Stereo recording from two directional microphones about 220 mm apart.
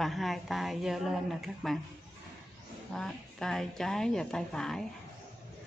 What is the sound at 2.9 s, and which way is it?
A woman's voice, centre (ahead or behind).